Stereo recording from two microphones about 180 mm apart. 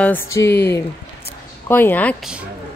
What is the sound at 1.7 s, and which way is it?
Speech, 10° left (ahead or behind).